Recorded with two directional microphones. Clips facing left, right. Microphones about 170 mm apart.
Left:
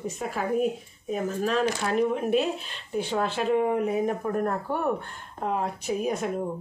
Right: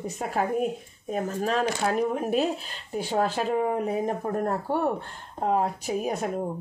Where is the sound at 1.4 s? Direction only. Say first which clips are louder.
Right 1 dB; 40° right (ahead or behind).